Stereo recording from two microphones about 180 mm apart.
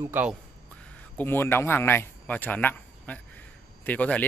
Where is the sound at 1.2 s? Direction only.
10° left (ahead or behind).